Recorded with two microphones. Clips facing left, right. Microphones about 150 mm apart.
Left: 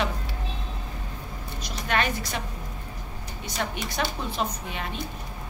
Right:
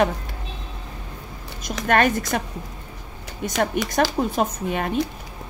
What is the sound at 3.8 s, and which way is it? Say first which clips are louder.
A woman's voice: right 9 dB; 50° right (ahead or behind).